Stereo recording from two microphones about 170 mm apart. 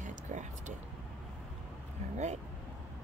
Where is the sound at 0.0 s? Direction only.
45° right (ahead or behind).